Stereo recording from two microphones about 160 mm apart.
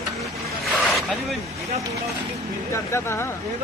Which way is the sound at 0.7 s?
Centre (ahead or behind).